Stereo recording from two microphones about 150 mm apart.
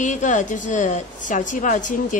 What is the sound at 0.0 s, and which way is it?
A woman's voice, 55° left (ahead or behind).